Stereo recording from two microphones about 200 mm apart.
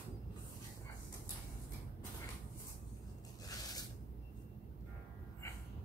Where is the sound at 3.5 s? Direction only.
20° left (ahead or behind).